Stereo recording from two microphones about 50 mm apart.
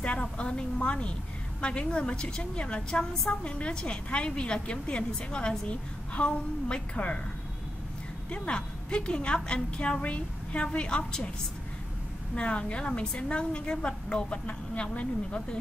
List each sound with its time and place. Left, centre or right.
0.0 s a woman's voice: left
8.3 s a woman's voice: centre
12.4 s a woman's voice: left